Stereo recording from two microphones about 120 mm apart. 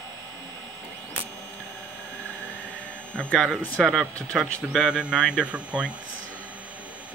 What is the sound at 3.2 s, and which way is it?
Speech, 5° left (ahead or behind).